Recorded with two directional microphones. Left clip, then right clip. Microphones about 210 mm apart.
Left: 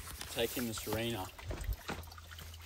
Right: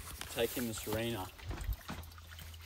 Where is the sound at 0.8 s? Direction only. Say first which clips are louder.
Even; 10° right (ahead or behind).